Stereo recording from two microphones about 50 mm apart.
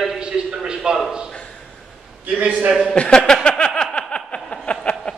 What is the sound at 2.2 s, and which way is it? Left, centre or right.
Speech, right.